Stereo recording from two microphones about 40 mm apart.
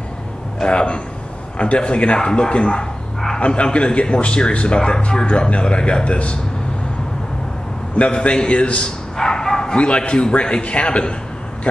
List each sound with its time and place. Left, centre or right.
0.6 s speech: left
8.1 s speech: left
9.1 s bow-wow: centre
9.8 s speech: left